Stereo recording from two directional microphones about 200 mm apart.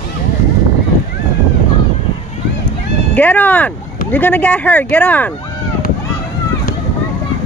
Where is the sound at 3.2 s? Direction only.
10° left (ahead or behind).